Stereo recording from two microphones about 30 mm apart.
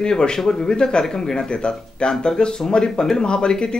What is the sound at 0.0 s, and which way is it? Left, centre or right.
A woman's voice, left.